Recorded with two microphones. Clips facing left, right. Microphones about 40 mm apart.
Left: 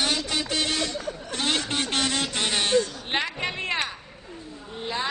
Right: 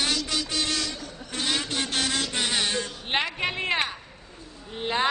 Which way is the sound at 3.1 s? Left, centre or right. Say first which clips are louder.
Right 1 dB; centre.